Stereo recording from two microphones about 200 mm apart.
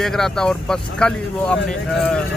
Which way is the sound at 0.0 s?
5° left (ahead or behind).